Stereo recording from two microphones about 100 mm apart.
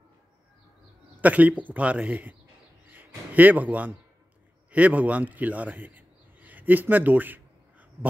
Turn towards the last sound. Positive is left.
turn(degrees=-20)  # may be behind; listen again after turning